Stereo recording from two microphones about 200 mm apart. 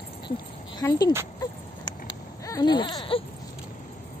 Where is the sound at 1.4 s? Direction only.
20° left (ahead or behind).